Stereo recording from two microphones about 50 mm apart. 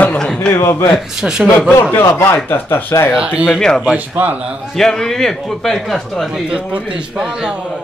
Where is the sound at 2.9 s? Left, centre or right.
Left.